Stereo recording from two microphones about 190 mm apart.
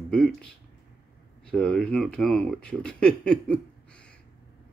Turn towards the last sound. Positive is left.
turn(degrees=5)  # may be behind; listen again after turning